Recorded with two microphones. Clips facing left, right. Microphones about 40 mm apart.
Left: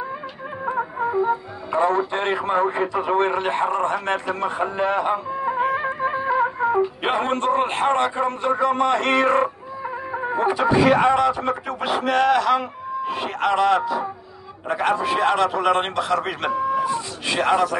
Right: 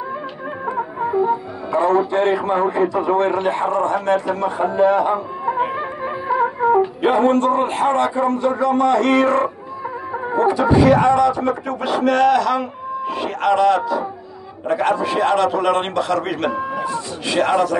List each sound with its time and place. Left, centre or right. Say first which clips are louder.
0.9 s music: right 4 dB; centre
2.1 s a man's voice: right 4 dB; left
5.9 s music: right 1 dB; centre
7.0 s a man's voice: right 7 dB; left; by 17.7 s centre